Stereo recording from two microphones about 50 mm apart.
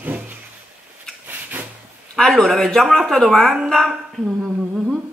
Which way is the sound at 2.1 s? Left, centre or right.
Centre.